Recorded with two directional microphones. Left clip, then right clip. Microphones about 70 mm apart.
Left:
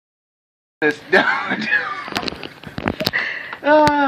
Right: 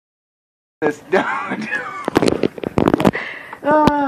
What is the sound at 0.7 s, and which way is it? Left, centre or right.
Speech, left.